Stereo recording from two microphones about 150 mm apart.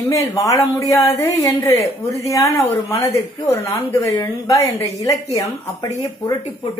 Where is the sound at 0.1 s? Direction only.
20° left (ahead or behind).